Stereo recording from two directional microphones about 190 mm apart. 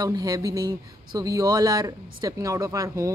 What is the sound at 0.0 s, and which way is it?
A woman's voice, 20° right (ahead or behind).